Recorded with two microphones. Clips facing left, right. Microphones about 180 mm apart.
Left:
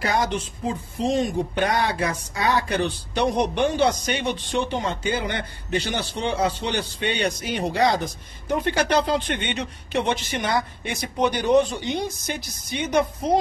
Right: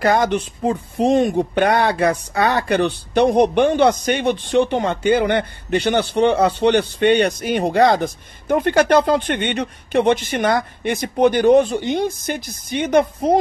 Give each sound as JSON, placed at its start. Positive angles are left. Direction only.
{"t": 0.0, "sound": "speech", "side_deg": -55}